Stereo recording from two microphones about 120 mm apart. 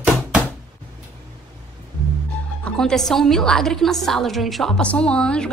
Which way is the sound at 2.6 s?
5° left (ahead or behind).